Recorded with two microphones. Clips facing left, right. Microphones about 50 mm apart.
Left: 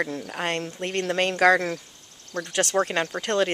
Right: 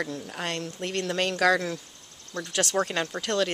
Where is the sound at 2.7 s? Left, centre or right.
Left.